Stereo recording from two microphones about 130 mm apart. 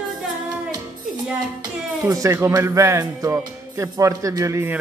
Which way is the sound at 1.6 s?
30° right (ahead or behind).